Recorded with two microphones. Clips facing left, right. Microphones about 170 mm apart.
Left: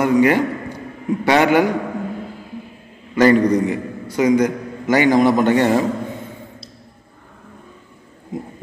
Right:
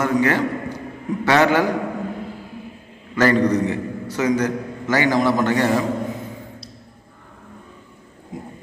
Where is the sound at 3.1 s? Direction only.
15° left (ahead or behind).